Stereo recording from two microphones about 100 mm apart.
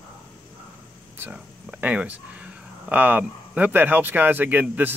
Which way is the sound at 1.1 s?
25° right (ahead or behind).